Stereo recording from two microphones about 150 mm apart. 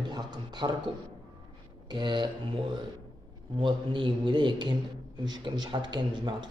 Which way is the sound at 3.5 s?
35° right (ahead or behind).